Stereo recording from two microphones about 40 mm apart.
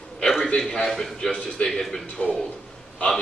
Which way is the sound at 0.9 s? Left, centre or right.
Centre.